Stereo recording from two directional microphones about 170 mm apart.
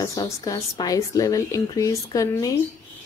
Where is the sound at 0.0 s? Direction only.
20° left (ahead or behind).